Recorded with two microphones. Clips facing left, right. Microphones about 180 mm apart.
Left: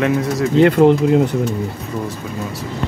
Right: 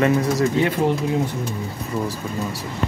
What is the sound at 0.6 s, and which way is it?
Speech, 70° left (ahead or behind).